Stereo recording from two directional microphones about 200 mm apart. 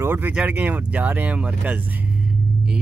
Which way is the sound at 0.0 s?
10° right (ahead or behind).